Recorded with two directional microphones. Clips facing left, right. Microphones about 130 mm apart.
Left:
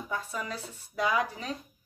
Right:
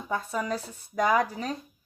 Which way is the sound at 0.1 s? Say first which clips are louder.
Right 7 dB; 45° right (ahead or behind).